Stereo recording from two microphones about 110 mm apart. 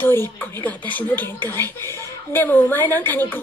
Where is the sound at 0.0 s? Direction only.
20° left (ahead or behind).